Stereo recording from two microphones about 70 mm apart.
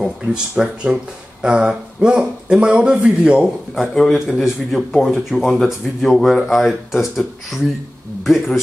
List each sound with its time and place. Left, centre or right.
0.0 s speech: centre
3.7 s speech: centre